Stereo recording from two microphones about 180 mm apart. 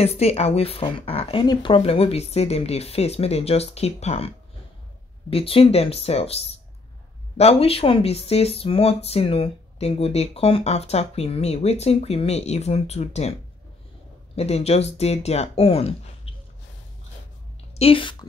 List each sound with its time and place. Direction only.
0.0 s speech: 35° left (ahead or behind)
5.3 s speech: 30° left (ahead or behind)
16.3 s snort: 30° left (ahead or behind)
17.7 s speech: 30° left (ahead or behind)